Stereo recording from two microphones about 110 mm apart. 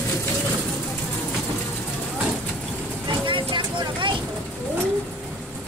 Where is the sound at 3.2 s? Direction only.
50° right (ahead or behind).